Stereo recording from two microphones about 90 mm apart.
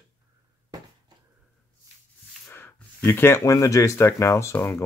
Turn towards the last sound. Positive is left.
turn(degrees=30)  # may be behind; listen again after turning